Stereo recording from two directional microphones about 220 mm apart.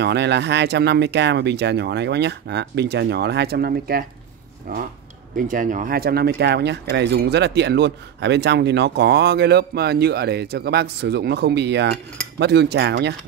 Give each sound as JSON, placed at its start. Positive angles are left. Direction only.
{"t": 0.0, "sound": "speech", "side_deg": -50}